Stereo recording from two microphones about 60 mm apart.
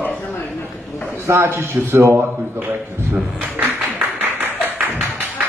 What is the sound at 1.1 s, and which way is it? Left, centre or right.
A man's voice, right.